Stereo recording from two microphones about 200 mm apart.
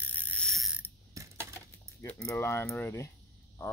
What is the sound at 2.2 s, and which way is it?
Speech, 15° left (ahead or behind).